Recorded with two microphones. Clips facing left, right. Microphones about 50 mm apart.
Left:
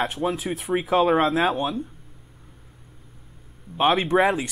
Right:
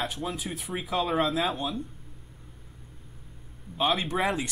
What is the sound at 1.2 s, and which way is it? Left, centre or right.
Speech, left.